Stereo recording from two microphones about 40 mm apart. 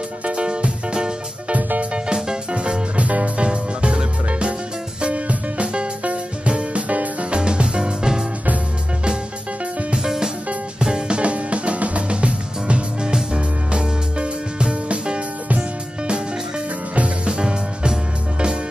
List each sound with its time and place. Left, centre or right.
0.2 s music: right
1.5 s music: right
2.0 s music: centre
9.9 s music: centre
16.9 s music: right